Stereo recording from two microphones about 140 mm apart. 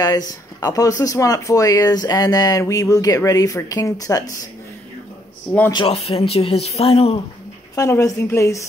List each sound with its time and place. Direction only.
0.0 s speech: 30° left (ahead or behind)
5.9 s speech: 45° left (ahead or behind)
7.7 s speech: 25° left (ahead or behind)